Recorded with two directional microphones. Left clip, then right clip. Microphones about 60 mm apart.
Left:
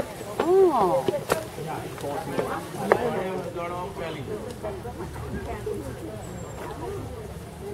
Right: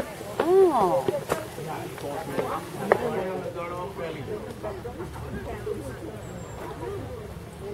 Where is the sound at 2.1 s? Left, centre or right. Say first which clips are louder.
Left 1 dB; left.